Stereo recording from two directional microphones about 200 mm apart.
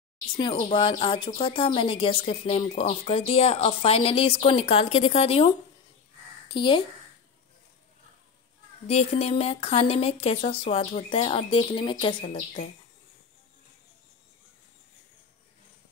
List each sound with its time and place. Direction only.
0.4 s a woman's voice: 25° left (ahead or behind)
6.5 s a woman's voice: 25° left (ahead or behind)
8.8 s a woman's voice: 30° left (ahead or behind)